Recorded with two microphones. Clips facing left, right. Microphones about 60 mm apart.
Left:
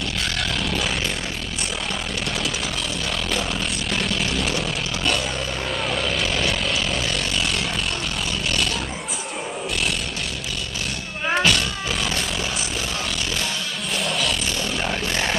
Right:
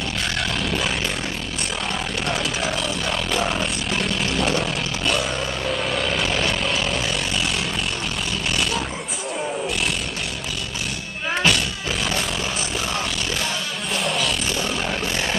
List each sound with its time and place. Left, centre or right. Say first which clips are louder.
3.9 s vehicle: even; centre
11.3 s music: even; centre
13.9 s music: right 1 dB; centre